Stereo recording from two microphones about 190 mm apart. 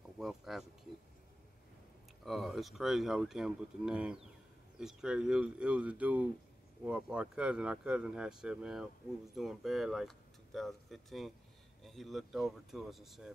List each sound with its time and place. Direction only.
0.2 s speech: centre (ahead or behind)
2.2 s speech: centre (ahead or behind)